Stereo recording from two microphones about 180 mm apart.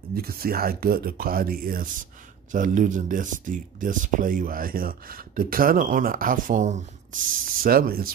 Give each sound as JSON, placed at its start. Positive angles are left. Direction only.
{"t": 0.1, "sound": "speech", "side_deg": -55}